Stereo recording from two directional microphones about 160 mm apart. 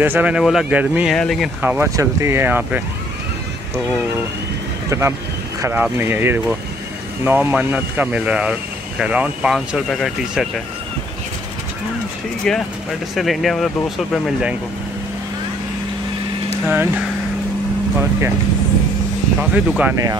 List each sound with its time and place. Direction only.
0.0 s speech: 10° right (ahead or behind)
1.1 s speech: centre (ahead or behind)
1.6 s speech: 10° right (ahead or behind)
4.8 s speech: 15° right (ahead or behind); by 10.5 s centre (ahead or behind)
12.5 s speech: 5° left (ahead or behind)
16.6 s speech: 10° right (ahead or behind)
19.5 s speech: 10° right (ahead or behind)